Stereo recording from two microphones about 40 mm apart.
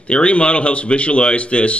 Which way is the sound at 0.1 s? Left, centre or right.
Left.